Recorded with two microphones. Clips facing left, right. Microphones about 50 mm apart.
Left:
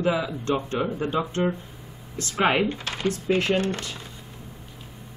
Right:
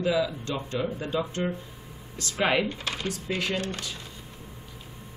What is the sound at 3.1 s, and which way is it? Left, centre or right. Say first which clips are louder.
Speech: left 9 dB; left.